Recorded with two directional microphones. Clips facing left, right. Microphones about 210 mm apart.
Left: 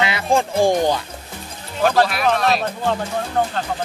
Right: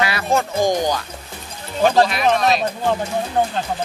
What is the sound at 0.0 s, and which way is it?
Speech, 25° left (ahead or behind).